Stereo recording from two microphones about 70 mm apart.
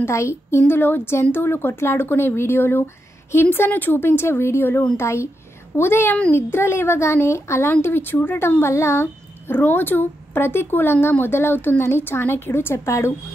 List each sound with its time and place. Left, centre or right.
0.0 s speech: left